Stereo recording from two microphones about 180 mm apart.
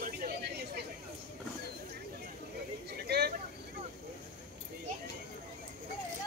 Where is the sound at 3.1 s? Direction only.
65° right (ahead or behind).